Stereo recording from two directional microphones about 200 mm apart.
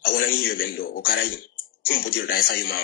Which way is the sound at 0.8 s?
45° left (ahead or behind).